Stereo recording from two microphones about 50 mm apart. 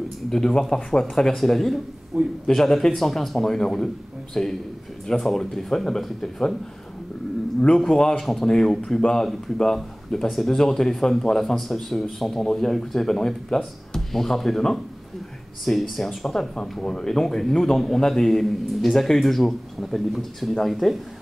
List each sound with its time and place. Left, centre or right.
0.3 s speech: centre
7.6 s speech: centre
8.2 s speech: centre